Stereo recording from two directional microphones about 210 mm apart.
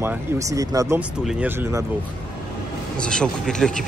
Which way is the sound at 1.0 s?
5° right (ahead or behind).